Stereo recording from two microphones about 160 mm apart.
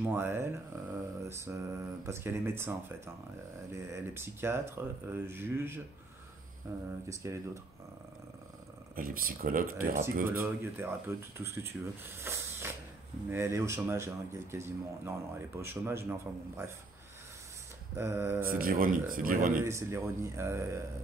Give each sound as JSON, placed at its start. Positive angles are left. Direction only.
{"t": 0.0, "sound": "speech", "side_deg": -15}
{"t": 8.9, "sound": "speech", "side_deg": -65}
{"t": 10.4, "sound": "speech", "side_deg": -15}
{"t": 17.9, "sound": "speech", "side_deg": -15}
{"t": 18.5, "sound": "speech", "side_deg": -65}
{"t": 19.6, "sound": "speech", "side_deg": -15}